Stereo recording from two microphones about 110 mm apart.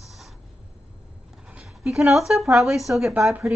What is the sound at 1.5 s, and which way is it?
Speech, 5° right (ahead or behind).